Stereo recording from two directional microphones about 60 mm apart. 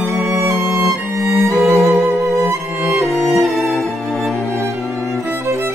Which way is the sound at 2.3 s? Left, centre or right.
Centre.